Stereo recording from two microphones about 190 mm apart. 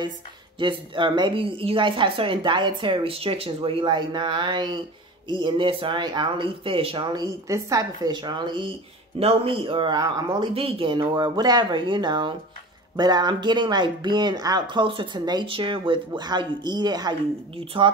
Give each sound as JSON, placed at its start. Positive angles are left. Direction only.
{"t": 0.6, "sound": "speech", "side_deg": -25}